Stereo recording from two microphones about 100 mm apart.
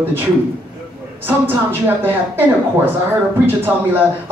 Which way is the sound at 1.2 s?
20° right (ahead or behind).